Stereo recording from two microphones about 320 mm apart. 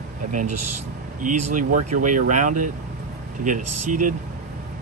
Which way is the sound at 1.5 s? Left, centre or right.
Right.